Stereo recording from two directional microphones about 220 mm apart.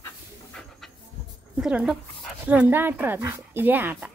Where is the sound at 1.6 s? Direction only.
5° right (ahead or behind).